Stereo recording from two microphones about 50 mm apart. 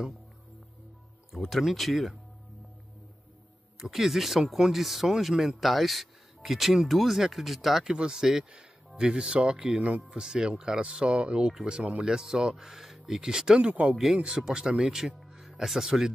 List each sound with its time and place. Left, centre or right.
1.6 s speech: centre
3.8 s speech: centre; by 13.9 s right
13.9 s speech: centre
15.2 s music: centre